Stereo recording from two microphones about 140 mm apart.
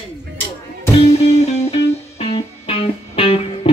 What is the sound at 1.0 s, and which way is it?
Music, 50° left (ahead or behind).